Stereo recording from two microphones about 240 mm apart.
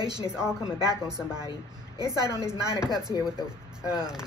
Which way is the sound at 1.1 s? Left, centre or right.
Centre.